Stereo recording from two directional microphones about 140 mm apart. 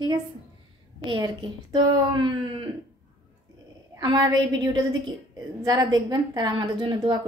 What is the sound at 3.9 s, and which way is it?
A woman's voice, 30° right (ahead or behind).